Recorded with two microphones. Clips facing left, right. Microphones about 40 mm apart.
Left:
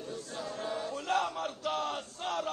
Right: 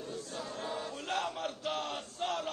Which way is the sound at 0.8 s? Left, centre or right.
Left.